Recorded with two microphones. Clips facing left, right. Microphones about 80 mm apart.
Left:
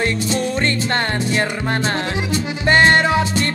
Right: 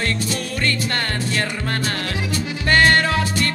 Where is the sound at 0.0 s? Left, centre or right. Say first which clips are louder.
Left 5 dB; left.